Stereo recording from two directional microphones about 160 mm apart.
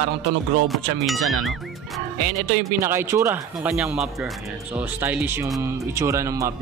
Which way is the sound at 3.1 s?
15° right (ahead or behind).